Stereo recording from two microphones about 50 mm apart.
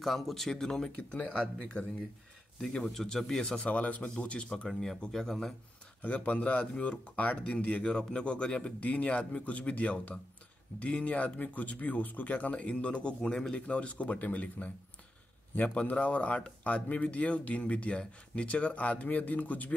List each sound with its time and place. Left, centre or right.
0.0 s speech: centre
1.6 s speech: left
2.6 s speech: centre
3.4 s speech: left
4.6 s speech: centre
6.0 s speech: left